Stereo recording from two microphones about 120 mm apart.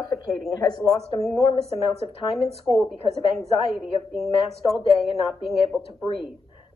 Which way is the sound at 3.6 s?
50° left (ahead or behind).